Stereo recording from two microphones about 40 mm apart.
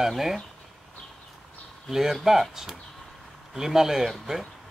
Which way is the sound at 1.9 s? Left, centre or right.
Centre.